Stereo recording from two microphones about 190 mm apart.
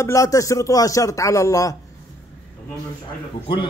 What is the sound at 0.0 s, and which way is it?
Speech, 15° left (ahead or behind).